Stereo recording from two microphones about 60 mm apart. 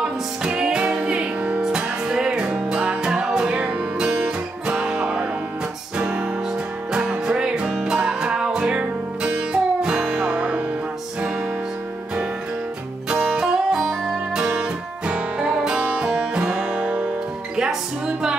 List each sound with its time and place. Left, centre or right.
0.0 s music: centre
4.6 s music: centre
13.1 s music: centre
14.3 s music: centre